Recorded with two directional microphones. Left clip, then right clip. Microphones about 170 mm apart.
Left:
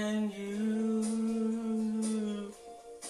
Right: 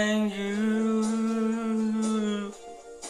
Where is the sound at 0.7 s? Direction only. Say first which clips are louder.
Right 5 dB; centre (ahead or behind).